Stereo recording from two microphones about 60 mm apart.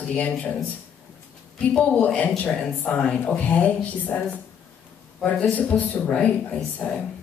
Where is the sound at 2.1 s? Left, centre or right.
Left.